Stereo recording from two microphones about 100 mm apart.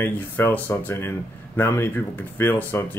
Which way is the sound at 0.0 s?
20° left (ahead or behind).